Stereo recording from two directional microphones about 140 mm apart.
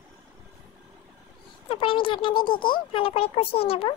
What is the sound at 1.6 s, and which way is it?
A child's voice, 40° left (ahead or behind).